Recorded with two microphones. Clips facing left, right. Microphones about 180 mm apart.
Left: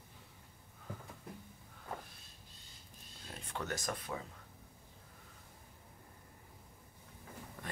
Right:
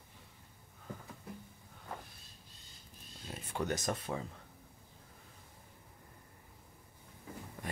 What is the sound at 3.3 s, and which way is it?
Speech, 15° right (ahead or behind).